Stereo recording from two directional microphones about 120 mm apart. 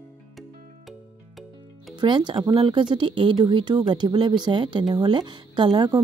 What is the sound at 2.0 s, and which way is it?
Speech, 40° right (ahead or behind).